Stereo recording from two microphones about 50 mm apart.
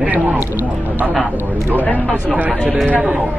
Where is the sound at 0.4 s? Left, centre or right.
Right.